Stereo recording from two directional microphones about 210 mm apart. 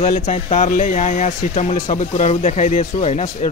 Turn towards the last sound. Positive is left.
turn(degrees=30)  # may be behind; listen again after turning